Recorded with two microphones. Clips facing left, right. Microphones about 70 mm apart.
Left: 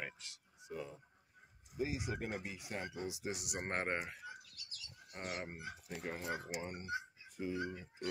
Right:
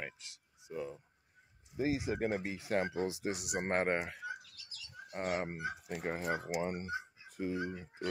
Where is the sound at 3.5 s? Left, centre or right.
Right.